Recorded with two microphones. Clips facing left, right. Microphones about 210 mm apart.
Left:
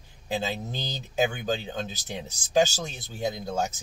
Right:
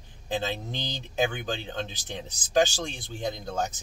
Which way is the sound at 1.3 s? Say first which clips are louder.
Left 3 dB; 10° left (ahead or behind).